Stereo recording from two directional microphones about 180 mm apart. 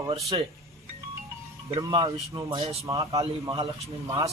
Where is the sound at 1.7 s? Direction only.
25° right (ahead or behind).